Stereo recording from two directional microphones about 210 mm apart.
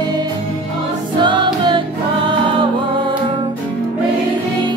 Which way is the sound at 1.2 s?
20° right (ahead or behind).